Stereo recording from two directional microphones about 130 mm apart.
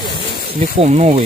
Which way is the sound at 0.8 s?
55° right (ahead or behind).